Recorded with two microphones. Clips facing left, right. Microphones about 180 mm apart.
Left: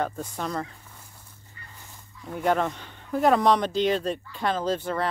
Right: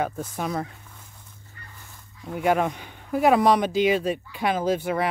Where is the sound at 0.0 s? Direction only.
5° right (ahead or behind).